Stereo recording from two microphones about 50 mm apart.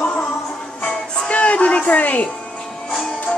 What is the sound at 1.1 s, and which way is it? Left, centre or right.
Music, left.